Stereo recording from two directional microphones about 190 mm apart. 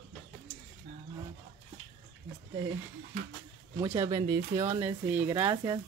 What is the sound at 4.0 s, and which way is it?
Speech, 15° right (ahead or behind).